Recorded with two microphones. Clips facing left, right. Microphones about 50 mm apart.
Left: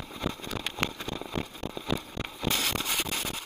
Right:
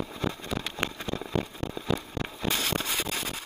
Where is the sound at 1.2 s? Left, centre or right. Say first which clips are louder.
Right 5 dB; centre.